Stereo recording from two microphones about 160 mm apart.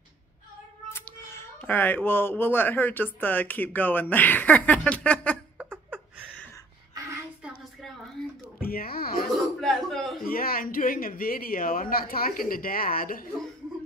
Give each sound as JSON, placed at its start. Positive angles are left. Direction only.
{"t": 0.8, "sound": "speech", "side_deg": 15}
{"t": 5.6, "sound": "a sound", "side_deg": -10}
{"t": 8.5, "sound": "speech", "side_deg": 65}
{"t": 9.3, "sound": "a man's voice", "side_deg": 0}
{"t": 10.2, "sound": "speech", "side_deg": 65}